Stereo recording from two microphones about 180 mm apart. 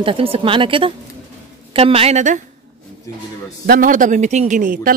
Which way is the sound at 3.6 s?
50° right (ahead or behind).